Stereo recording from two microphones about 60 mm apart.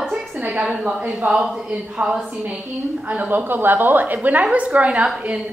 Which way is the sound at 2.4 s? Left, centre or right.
Right.